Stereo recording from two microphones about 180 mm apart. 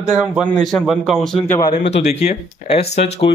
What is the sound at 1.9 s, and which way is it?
Speech, 35° left (ahead or behind).